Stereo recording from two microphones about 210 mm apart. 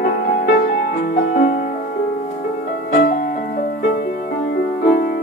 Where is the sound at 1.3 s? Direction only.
40° left (ahead or behind).